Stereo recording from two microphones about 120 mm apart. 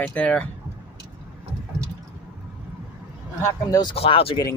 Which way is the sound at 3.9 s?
50° left (ahead or behind).